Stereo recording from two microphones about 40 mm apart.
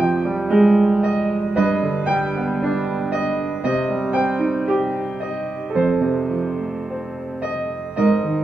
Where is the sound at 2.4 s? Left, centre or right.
Centre.